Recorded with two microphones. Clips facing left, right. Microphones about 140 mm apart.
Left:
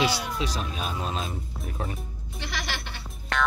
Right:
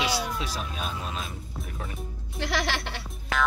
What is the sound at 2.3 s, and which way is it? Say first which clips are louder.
Speech: right 6 dB; 85° right.